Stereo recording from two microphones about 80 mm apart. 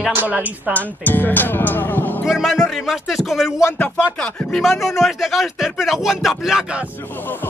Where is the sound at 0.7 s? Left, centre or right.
Left.